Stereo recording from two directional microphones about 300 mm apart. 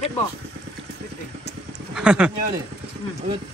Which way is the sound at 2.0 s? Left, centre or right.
Centre.